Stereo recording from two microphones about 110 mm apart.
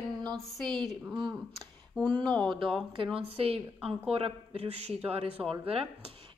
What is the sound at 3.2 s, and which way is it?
A man's voice, 65° right (ahead or behind).